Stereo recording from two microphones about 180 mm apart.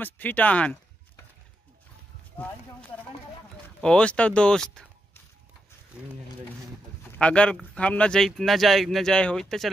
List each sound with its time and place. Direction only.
0.0 s speech: 10° left (ahead or behind)
2.4 s speech: 10° left (ahead or behind)
3.8 s speech: 5° left (ahead or behind)
7.0 s speech: 5° left (ahead or behind)